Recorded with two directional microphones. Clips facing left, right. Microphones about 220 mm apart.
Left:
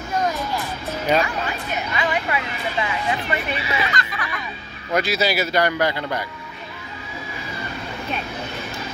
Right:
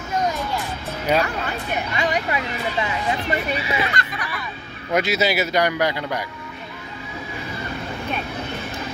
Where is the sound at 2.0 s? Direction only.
40° right (ahead or behind).